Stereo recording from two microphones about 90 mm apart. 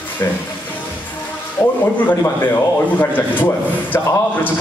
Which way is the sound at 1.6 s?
30° left (ahead or behind).